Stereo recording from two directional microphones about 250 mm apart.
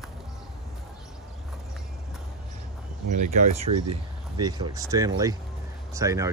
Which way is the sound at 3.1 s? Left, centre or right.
Right.